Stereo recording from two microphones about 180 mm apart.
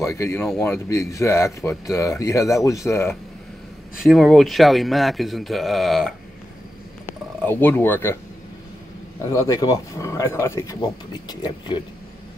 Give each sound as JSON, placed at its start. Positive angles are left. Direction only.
{"t": 0.0, "sound": "speech", "side_deg": 15}
{"t": 4.0, "sound": "speech", "side_deg": 0}
{"t": 7.4, "sound": "speech", "side_deg": 10}
{"t": 9.3, "sound": "speech", "side_deg": 20}